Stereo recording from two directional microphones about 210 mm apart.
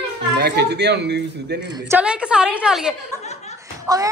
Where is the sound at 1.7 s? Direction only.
20° right (ahead or behind).